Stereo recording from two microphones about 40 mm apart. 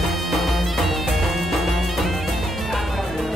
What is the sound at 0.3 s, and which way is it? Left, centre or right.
Music, centre.